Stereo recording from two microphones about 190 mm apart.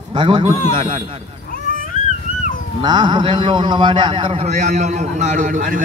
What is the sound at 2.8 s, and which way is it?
A man's voice, 25° right (ahead or behind).